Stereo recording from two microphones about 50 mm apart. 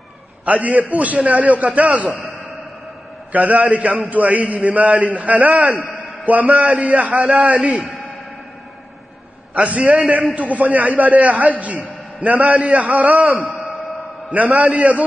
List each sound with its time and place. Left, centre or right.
0.5 s a man's voice: right
3.3 s a man's voice: right
9.5 s a man's voice: right